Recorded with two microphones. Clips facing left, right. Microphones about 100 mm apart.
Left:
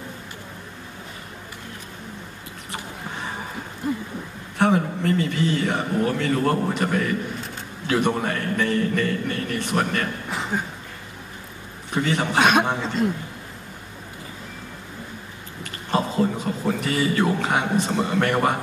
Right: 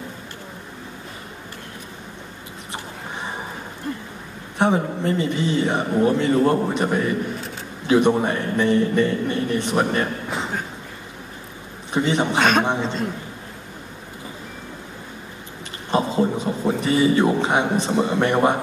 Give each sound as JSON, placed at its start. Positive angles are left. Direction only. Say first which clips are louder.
{"t": 4.6, "sound": "a man's voice", "louder": "right 1 dB", "side_deg": -20}
{"t": 11.9, "sound": "a man's voice", "louder": "right 3 dB", "side_deg": -20}
{"t": 12.4, "sound": "a man's voice", "louder": "left 2 dB", "side_deg": 10}
{"t": 12.6, "sound": "a man's voice", "louder": "right 3 dB", "side_deg": -20}
{"t": 15.9, "sound": "a man's voice", "louder": "right 2 dB", "side_deg": -20}